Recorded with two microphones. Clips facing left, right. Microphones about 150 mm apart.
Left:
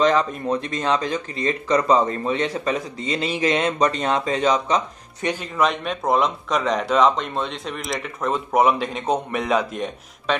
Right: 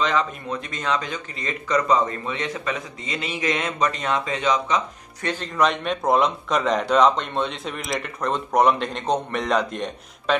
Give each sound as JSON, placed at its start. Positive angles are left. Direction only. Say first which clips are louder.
{"t": 0.5, "sound": "speech", "louder": "left 4 dB", "side_deg": 35}
{"t": 5.2, "sound": "speech", "louder": "left 1 dB", "side_deg": 10}